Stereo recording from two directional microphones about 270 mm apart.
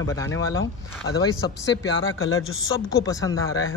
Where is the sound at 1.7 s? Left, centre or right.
Left.